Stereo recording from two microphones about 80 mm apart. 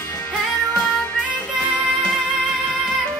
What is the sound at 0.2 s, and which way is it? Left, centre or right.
Music, centre.